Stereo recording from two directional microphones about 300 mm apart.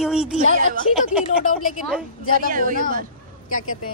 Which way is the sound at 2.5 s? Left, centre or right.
Right.